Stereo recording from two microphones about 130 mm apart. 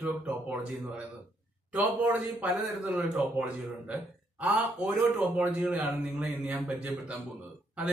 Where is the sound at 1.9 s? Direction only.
10° right (ahead or behind).